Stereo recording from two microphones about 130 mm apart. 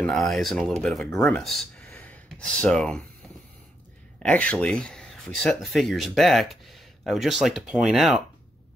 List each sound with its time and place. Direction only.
0.0 s speech: 5° left (ahead or behind)
1.9 s a sound: 10° left (ahead or behind)
4.2 s speech: 10° left (ahead or behind)